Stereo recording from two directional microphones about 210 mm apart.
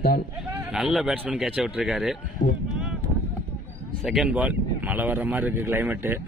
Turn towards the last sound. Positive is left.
turn(degrees=-10)  # may be behind; listen again after turning